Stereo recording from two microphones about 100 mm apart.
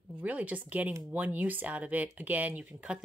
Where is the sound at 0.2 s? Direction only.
15° right (ahead or behind).